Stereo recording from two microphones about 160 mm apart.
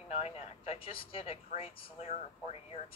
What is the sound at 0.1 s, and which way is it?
A woman's voice, 40° left (ahead or behind).